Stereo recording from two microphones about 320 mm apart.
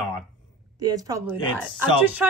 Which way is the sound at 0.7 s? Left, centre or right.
Centre.